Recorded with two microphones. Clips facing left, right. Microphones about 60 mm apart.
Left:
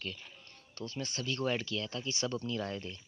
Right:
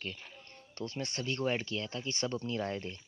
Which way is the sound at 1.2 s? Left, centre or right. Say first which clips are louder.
Right 1 dB; right.